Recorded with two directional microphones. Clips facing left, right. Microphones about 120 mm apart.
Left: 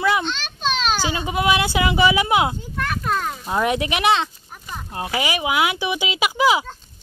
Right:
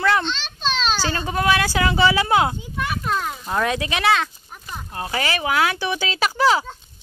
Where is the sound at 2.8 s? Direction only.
5° right (ahead or behind).